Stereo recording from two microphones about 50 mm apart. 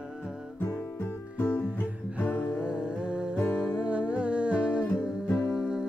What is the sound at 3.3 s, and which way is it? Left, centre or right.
Music, left.